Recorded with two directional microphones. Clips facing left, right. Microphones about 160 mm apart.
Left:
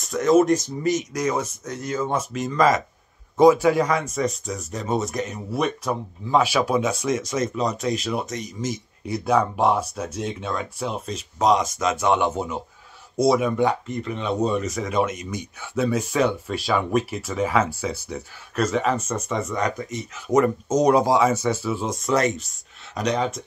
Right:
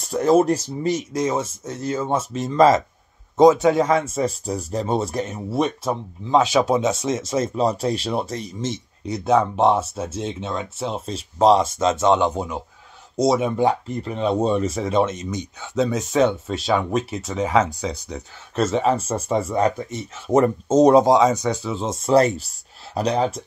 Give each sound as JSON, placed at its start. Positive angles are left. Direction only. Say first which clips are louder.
{"t": 0.0, "sound": "speech", "louder": "right 1 dB", "side_deg": -30}
{"t": 22.0, "sound": "speech", "louder": "right 6 dB", "side_deg": -35}